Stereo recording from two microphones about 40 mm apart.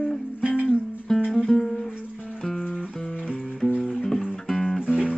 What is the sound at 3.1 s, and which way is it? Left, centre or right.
Music, left.